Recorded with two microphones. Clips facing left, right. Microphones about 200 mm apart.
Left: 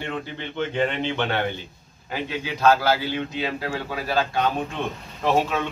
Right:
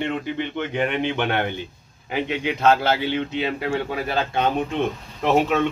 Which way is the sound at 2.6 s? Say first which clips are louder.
Even; 25° right (ahead or behind).